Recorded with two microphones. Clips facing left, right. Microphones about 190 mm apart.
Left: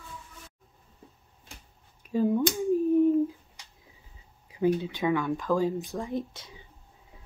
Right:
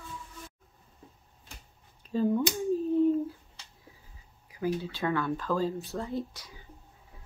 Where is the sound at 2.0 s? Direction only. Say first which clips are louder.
Left 2 dB; 10° left (ahead or behind).